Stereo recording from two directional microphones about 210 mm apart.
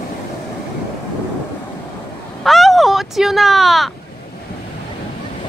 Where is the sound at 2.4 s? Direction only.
Centre (ahead or behind).